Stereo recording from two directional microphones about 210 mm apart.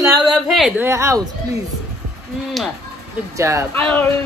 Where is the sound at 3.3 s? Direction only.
15° right (ahead or behind).